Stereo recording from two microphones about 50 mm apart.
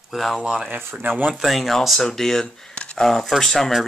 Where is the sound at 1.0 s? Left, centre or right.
Right.